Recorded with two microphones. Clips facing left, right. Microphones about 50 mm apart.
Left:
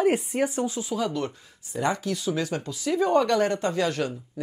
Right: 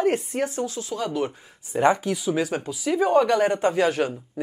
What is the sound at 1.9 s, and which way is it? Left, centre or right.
Speech, right.